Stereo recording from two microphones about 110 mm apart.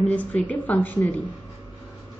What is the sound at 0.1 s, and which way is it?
A woman's voice, 15° left (ahead or behind).